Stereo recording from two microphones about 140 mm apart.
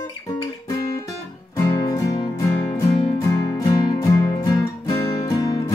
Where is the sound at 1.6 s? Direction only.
25° left (ahead or behind).